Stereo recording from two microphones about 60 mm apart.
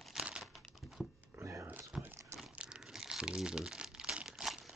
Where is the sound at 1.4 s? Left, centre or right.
Right.